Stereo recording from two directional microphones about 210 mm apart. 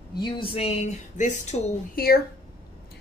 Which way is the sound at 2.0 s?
45° left (ahead or behind).